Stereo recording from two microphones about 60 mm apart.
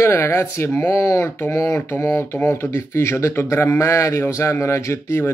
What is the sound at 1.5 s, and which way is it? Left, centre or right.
Speech, left.